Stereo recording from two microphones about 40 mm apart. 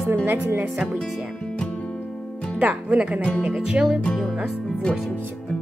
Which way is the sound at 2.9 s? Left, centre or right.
Right.